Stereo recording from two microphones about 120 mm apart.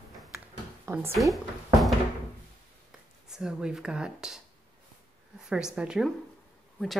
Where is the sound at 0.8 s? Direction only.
20° right (ahead or behind).